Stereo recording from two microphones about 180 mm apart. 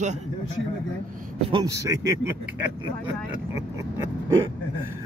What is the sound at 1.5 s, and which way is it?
Speech, 20° right (ahead or behind).